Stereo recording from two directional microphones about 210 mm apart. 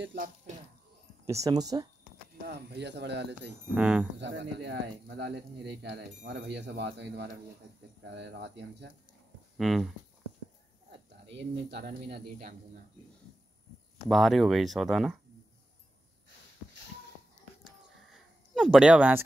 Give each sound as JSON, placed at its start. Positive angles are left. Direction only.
{"t": 0.0, "sound": "speech", "side_deg": -55}
{"t": 1.2, "sound": "speech", "side_deg": -15}
{"t": 2.4, "sound": "speech", "side_deg": -50}
{"t": 3.7, "sound": "speech", "side_deg": -5}
{"t": 4.2, "sound": "speech", "side_deg": -55}
{"t": 9.6, "sound": "speech", "side_deg": 0}
{"t": 11.2, "sound": "speech", "side_deg": -55}
{"t": 14.0, "sound": "speech", "side_deg": 0}
{"t": 17.6, "sound": "a sound", "side_deg": 0}